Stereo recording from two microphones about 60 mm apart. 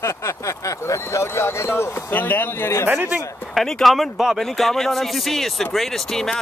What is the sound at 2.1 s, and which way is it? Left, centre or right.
Speech, left.